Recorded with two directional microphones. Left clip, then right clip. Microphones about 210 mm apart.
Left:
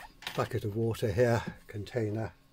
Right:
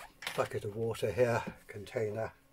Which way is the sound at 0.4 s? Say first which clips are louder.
Left 2 dB; 35° left (ahead or behind).